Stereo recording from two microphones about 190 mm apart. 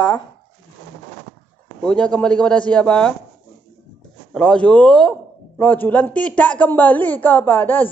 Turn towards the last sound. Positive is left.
turn(degrees=10)  # may be behind; listen again after turning